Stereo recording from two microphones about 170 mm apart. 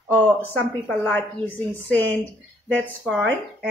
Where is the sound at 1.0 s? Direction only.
10° left (ahead or behind).